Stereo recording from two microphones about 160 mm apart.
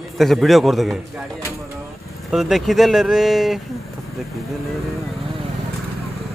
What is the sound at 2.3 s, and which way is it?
Speech, centre (ahead or behind).